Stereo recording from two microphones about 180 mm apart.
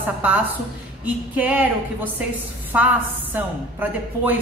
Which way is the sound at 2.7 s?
5° right (ahead or behind).